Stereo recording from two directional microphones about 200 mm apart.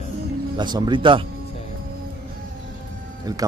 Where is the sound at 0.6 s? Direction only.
20° right (ahead or behind).